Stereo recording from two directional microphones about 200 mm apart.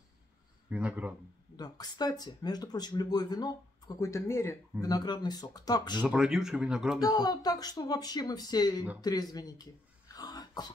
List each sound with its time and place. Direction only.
0.7 s speech: 5° right (ahead or behind)
1.6 s speech: 20° left (ahead or behind)
5.9 s speech: 5° right (ahead or behind)
7.0 s speech: 20° left (ahead or behind)
9.0 s throat clearing: 20° left (ahead or behind)